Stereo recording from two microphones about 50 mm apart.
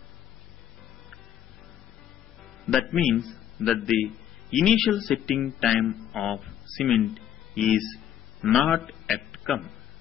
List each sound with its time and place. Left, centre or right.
2.6 s a man's voice: centre